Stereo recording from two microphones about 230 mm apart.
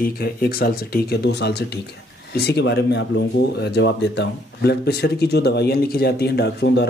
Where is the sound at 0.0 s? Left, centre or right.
Left.